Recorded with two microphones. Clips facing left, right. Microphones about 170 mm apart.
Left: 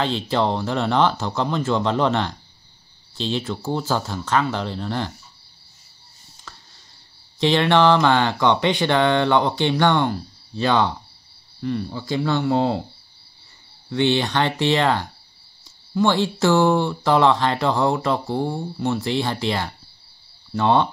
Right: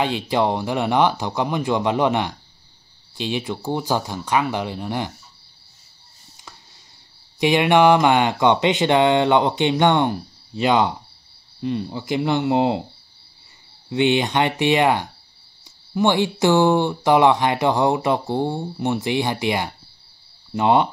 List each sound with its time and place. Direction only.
0.0 s speech: 10° right (ahead or behind)
7.3 s speech: 15° right (ahead or behind)
13.8 s speech: 15° right (ahead or behind)